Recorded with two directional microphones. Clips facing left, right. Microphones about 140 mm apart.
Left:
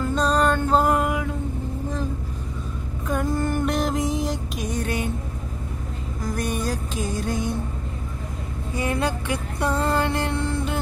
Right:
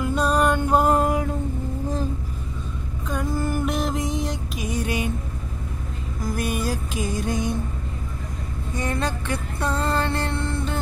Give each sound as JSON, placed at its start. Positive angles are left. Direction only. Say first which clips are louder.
{"t": 0.0, "sound": "music", "louder": "even", "side_deg": -10}
{"t": 0.9, "sound": "a sound", "louder": "right 2 dB", "side_deg": -35}
{"t": 3.1, "sound": "music", "louder": "left 2 dB", "side_deg": 0}
{"t": 4.7, "sound": "music", "louder": "right 1 dB", "side_deg": -10}
{"t": 6.2, "sound": "music", "louder": "right 1 dB", "side_deg": -5}
{"t": 8.7, "sound": "music", "louder": "left 2 dB", "side_deg": 10}